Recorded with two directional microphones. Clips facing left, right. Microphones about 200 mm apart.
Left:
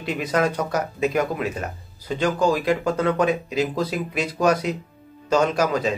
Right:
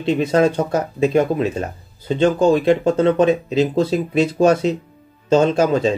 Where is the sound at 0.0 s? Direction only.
25° right (ahead or behind).